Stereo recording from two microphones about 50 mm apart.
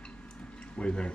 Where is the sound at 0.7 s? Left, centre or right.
Left.